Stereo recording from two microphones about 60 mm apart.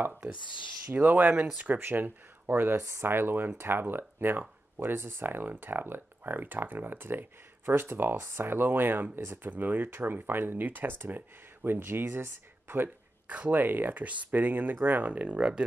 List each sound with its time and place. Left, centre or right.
0.9 s speech: right